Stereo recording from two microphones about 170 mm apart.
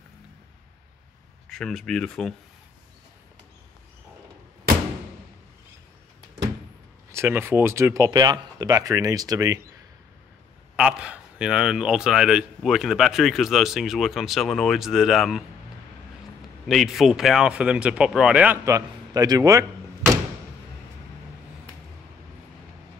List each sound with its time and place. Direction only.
1.5 s speech: centre (ahead or behind)
7.1 s speech: 15° right (ahead or behind)
10.8 s speech: 5° right (ahead or behind)
16.6 s speech: centre (ahead or behind)
18.7 s speech: 20° right (ahead or behind)